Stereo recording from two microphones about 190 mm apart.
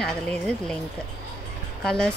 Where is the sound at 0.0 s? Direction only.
5° left (ahead or behind).